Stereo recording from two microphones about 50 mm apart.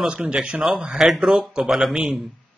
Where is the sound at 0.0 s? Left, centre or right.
Right.